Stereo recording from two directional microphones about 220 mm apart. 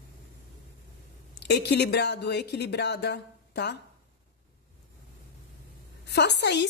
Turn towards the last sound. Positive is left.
turn(degrees=50)  # may be behind; listen again after turning